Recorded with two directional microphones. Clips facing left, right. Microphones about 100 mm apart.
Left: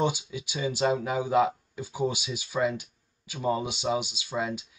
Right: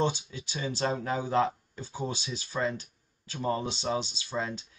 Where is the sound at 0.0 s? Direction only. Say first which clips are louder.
Left 2 dB; 15° left (ahead or behind).